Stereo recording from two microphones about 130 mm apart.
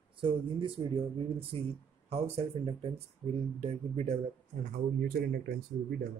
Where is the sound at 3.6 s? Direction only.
55° right (ahead or behind).